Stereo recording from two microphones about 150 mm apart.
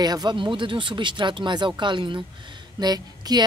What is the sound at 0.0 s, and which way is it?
Speech, 25° right (ahead or behind).